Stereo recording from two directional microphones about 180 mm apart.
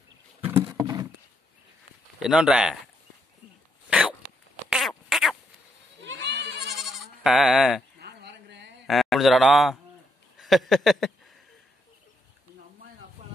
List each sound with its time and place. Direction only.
0.5 s horse: 10° right (ahead or behind)
0.7 s horse: 20° right (ahead or behind)
2.2 s speech: 5° right (ahead or behind)
4.6 s rodents: centre (ahead or behind)
6.0 s goat: 75° right (ahead or behind)
6.8 s bleat: centre (ahead or behind)
8.0 s a sound: 65° right (ahead or behind)
8.8 s a man's voice: centre (ahead or behind)
10.3 s a sound: centre (ahead or behind)